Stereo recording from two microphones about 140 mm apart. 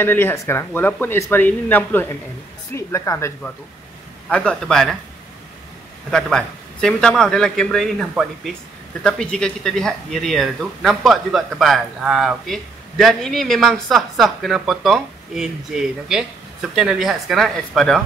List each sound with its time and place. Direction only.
0.0 s speech: 15° left (ahead or behind)
4.3 s speech: 5° left (ahead or behind)
6.0 s speech: 5° left (ahead or behind)